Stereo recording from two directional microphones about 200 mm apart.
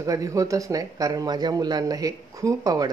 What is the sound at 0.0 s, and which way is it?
A man's voice, 15° right (ahead or behind).